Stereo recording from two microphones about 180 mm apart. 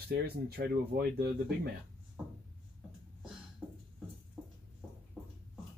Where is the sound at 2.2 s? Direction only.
5° right (ahead or behind).